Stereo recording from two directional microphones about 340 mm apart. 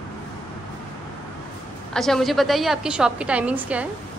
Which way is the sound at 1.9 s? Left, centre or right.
Centre.